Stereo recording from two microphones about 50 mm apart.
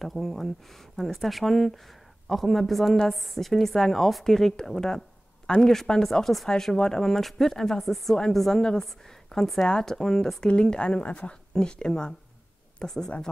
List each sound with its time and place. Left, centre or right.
0.0 s a woman's voice: centre
9.7 s speech: centre